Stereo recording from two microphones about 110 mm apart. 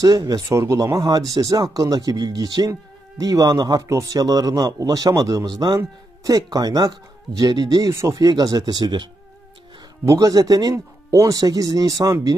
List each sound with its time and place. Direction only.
0.0 s speech: 35° right (ahead or behind)